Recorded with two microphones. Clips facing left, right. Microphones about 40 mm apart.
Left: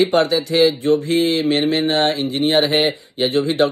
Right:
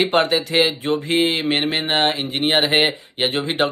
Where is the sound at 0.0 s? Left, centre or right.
Right.